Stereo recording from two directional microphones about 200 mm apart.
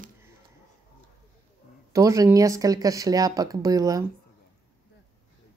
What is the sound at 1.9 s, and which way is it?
A woman's voice, 15° right (ahead or behind).